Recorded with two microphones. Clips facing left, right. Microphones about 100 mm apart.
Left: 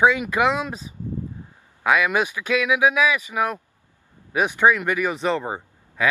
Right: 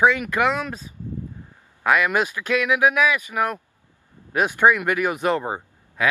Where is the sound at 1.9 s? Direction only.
15° left (ahead or behind).